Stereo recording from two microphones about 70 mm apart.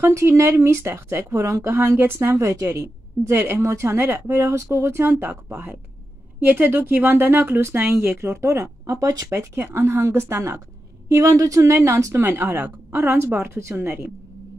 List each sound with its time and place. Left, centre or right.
0.0 s a woman's voice: right
1.3 s speech: right
1.7 s a woman's voice: right
9.6 s a woman's voice: right
11.1 s a woman's voice: right